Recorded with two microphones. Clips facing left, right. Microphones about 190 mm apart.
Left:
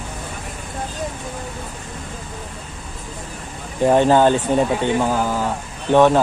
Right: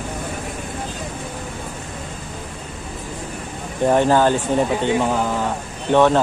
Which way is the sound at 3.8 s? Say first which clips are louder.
Left 2 dB; 20° left (ahead or behind).